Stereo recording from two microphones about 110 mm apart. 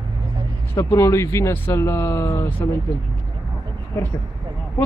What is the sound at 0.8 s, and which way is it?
Speech, 30° left (ahead or behind).